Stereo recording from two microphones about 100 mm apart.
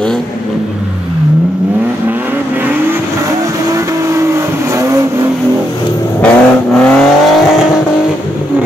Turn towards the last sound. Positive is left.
turn(degrees=0)  # may be behind; listen again after turning